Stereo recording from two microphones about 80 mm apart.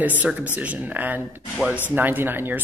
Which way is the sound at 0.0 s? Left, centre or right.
Centre.